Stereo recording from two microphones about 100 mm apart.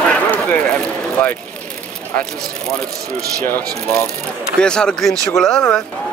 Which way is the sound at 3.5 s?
20° left (ahead or behind).